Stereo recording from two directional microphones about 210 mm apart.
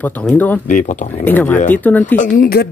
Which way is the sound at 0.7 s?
40° left (ahead or behind).